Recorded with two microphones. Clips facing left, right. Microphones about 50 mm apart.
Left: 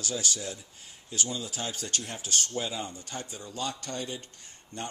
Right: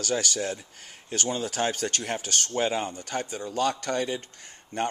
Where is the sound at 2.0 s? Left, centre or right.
Right.